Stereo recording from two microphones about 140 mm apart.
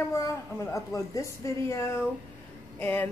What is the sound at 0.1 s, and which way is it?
A woman's voice, 20° left (ahead or behind).